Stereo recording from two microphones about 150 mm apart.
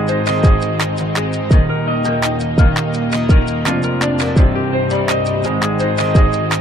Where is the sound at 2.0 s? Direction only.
Centre (ahead or behind).